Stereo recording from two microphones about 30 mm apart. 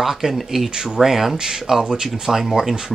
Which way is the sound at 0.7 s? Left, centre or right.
Right.